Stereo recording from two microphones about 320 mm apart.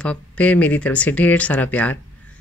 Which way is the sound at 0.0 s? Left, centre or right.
Centre.